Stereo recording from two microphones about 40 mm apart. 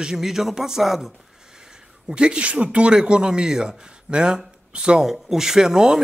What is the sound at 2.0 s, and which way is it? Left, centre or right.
A man's voice, right.